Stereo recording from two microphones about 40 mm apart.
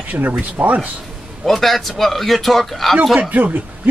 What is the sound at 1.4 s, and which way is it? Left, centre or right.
Speech, centre.